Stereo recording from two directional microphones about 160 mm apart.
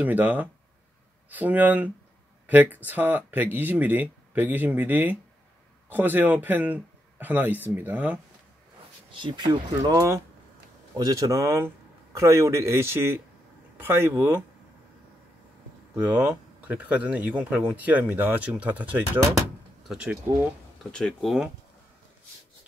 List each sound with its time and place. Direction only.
0.0 s speech: 10° right (ahead or behind)
9.1 s speech: 30° right (ahead or behind)
15.9 s speech: 10° right (ahead or behind)